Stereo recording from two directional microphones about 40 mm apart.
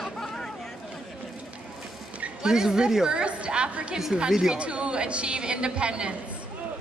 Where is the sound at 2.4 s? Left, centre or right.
Centre.